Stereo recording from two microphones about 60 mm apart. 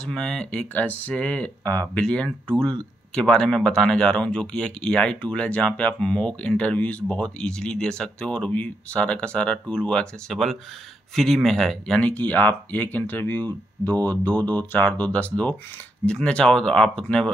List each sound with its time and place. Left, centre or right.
0.0 s speech: centre
10.2 s speech: centre
12.0 s speech: left